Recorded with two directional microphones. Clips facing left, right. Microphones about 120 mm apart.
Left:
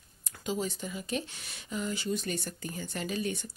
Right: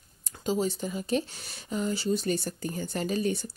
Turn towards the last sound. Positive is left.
turn(degrees=-35)  # may be behind; listen again after turning